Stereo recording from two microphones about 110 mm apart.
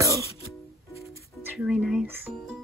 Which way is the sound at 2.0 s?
20° right (ahead or behind).